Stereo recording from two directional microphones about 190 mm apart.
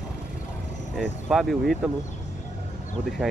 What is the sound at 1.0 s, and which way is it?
Speech, centre (ahead or behind).